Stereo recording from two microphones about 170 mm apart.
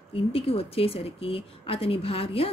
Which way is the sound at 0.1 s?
35° left (ahead or behind).